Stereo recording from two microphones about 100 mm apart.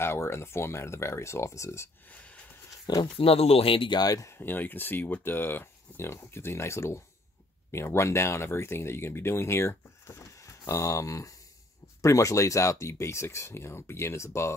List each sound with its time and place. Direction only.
0.0 s speech: 25° left (ahead or behind)
3.2 s speech: 80° left; by 4.0 s 60° left (ahead or behind)
4.0 s speech: 35° left (ahead or behind)